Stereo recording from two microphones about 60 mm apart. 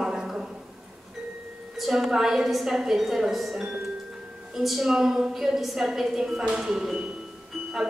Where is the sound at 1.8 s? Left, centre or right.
Centre.